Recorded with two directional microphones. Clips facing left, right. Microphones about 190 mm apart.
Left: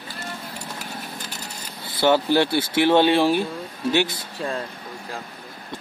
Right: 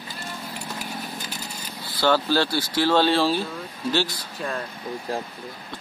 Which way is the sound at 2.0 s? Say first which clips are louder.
Left 3 dB; 20° left (ahead or behind).